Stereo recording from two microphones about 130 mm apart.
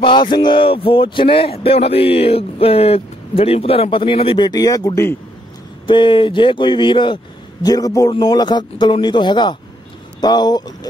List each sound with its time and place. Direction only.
0.0 s speech: 35° left (ahead or behind)
4.5 s speech: 30° left (ahead or behind)
5.9 s speech: 40° left (ahead or behind)